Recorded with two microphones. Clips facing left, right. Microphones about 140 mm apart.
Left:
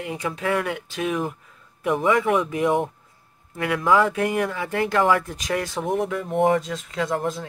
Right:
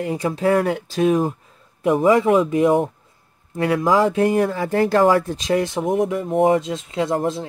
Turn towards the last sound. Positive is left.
turn(degrees=-25)  # may be behind; listen again after turning